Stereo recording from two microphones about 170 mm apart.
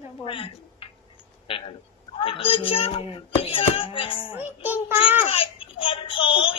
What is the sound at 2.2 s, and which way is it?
Speech, 30° left (ahead or behind).